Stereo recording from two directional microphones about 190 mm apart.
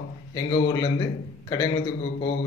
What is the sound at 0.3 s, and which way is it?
A man's voice, 20° left (ahead or behind).